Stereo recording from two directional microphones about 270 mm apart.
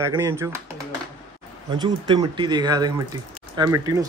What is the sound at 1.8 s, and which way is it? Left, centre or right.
Speech, centre.